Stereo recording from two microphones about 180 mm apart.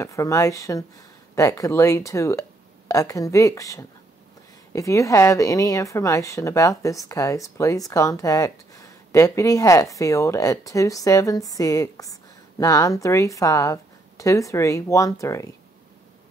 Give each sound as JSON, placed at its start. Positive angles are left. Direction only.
{"t": 0.0, "sound": "a woman's voice", "side_deg": 15}